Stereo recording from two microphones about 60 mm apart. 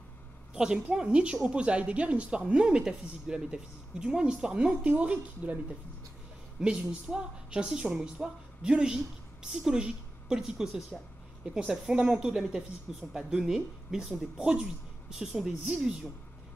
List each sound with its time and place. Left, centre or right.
0.6 s a woman's voice: centre
6.6 s a woman's voice: centre